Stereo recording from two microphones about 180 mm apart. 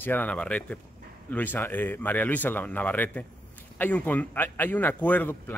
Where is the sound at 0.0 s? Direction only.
10° left (ahead or behind).